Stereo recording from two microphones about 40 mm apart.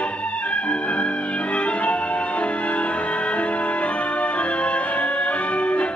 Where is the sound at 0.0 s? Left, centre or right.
Left.